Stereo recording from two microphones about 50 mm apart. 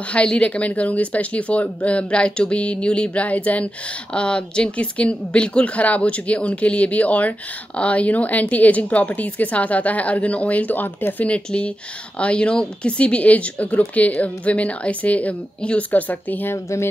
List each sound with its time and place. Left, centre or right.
0.4 s speech: left
11.2 s speech: left
16.5 s speech: left